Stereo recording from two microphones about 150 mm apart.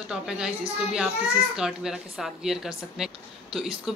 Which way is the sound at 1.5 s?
5° right (ahead or behind).